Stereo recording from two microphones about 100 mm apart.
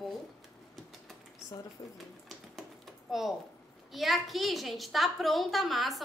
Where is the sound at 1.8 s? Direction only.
35° left (ahead or behind).